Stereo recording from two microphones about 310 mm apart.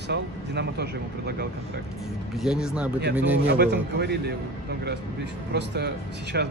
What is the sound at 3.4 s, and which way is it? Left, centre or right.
A man's voice, right.